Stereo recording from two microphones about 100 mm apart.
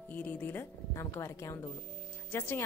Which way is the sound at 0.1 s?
20° left (ahead or behind).